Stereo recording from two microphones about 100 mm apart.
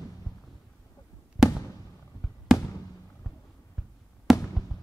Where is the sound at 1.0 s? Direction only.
45° left (ahead or behind).